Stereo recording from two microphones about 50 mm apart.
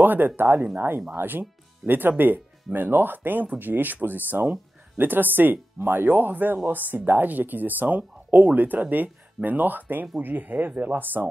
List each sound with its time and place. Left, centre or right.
0.0 s speech: right